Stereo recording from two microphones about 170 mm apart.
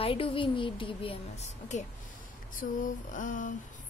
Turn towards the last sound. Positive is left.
turn(degrees=50)  # may be behind; listen again after turning